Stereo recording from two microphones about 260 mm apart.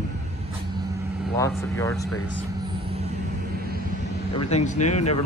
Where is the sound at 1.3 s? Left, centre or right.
Centre.